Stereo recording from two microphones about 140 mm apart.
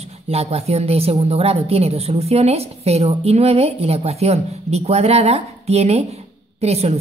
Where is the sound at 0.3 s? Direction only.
50° right (ahead or behind).